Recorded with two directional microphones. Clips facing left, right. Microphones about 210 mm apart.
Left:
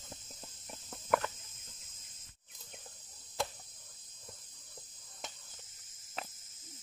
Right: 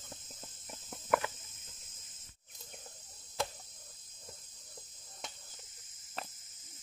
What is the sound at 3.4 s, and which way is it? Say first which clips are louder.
Chop: even; centre (ahead or behind).